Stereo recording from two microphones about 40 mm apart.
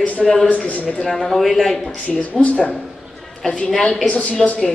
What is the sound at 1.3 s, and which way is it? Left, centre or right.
Speech, centre.